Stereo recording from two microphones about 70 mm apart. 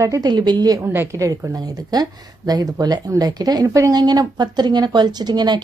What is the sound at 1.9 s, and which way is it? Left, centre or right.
A woman's voice, right.